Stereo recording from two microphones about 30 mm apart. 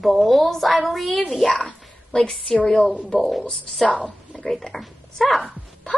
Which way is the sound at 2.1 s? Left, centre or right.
Left.